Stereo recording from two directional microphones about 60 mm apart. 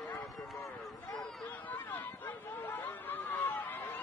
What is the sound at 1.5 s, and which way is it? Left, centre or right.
Chatter, left.